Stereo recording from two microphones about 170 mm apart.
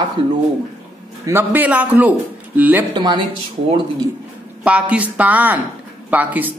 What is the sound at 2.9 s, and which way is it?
Speech, 25° right (ahead or behind).